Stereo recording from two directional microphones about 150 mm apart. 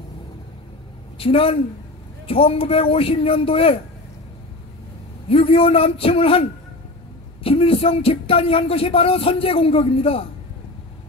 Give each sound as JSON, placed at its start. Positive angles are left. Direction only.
{"t": 1.1, "sound": "speech", "side_deg": 40}
{"t": 5.3, "sound": "speech", "side_deg": 40}
{"t": 7.4, "sound": "speech", "side_deg": 40}